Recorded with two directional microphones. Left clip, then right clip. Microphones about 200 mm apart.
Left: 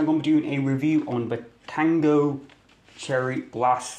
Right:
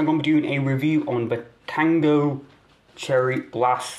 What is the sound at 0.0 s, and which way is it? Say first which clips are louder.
Speech: right 1 dB; 20° left (ahead or behind).